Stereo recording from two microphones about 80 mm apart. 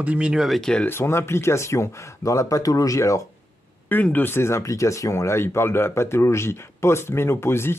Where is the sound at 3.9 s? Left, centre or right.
Left.